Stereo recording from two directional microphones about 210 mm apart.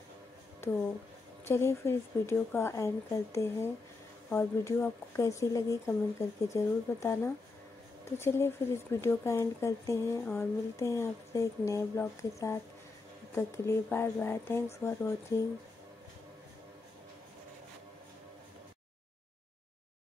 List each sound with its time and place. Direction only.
0.6 s speech: 10° left (ahead or behind)